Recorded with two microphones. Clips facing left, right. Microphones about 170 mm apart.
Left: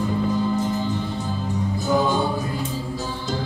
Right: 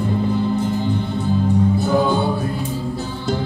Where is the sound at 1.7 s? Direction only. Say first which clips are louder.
Right 3 dB; 60° right (ahead or behind).